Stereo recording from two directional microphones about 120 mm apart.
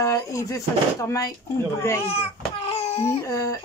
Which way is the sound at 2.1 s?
55° left (ahead or behind).